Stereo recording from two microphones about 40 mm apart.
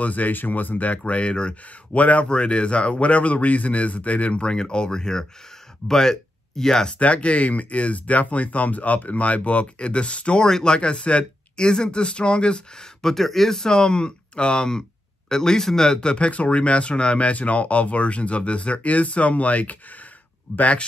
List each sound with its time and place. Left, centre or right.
0.0 s speech: left
2.0 s speech: left
2.2 s speech: left
7.0 s speech: left
10.4 s speech: centre
13.0 s speech: centre; by 20.8 s left